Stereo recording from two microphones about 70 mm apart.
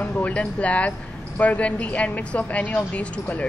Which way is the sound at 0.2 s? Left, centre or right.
Centre.